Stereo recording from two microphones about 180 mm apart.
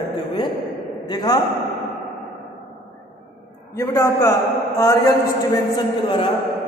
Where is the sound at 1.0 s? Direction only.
20° left (ahead or behind).